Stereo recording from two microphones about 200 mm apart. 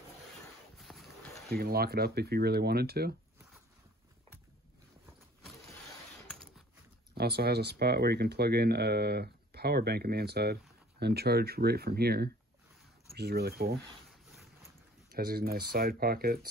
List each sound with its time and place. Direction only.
0.7 s a sound: centre (ahead or behind)
1.5 s speech: 50° right (ahead or behind)
6.2 s a sound: centre (ahead or behind)
7.2 s speech: 55° right (ahead or behind)
14.3 s boat: centre (ahead or behind)
15.0 s speech: 50° right (ahead or behind)